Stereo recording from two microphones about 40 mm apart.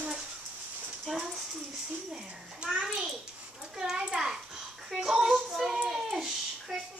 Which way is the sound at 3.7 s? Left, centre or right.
Centre.